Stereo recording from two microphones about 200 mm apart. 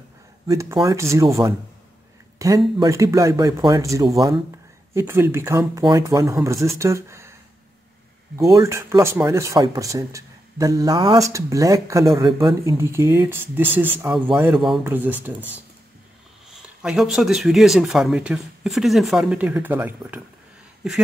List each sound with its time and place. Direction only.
0.5 s speech: 15° right (ahead or behind)
8.5 s speech: 15° right (ahead or behind)
16.8 s speech: centre (ahead or behind)